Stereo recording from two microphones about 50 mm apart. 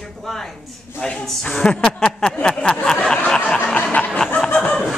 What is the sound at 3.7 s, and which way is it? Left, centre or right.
Snicker, left.